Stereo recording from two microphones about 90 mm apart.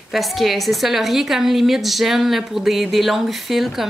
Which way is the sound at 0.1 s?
Centre (ahead or behind).